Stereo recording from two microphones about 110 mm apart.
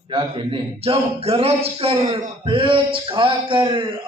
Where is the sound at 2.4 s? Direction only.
50° right (ahead or behind).